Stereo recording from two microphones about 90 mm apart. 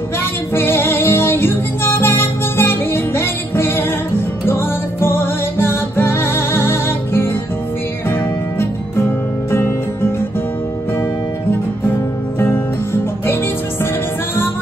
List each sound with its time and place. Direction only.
0.2 s music: 25° left (ahead or behind)
12.4 s music: 25° left (ahead or behind)